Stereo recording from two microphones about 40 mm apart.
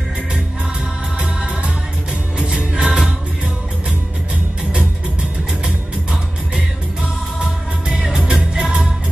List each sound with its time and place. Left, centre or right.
2.3 s music: centre
8.3 s music: centre